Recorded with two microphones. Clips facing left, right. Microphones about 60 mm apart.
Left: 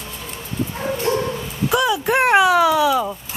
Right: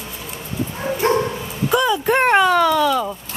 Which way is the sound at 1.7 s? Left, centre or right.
Centre.